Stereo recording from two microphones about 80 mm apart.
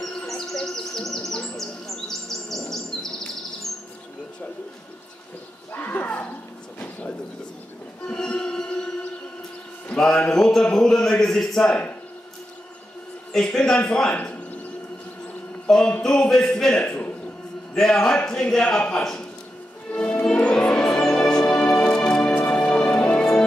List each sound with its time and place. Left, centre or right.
0.6 s chirp: centre
2.0 s bird: centre
5.7 s wild animals: left
8.1 s music: centre
9.9 s a man's voice: centre
13.3 s a man's voice: centre
15.6 s a man's voice: centre
19.9 s music: centre